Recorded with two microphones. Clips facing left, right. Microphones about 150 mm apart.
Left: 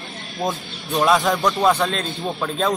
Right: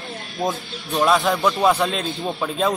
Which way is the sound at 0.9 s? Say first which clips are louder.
Left 1 dB; centre (ahead or behind).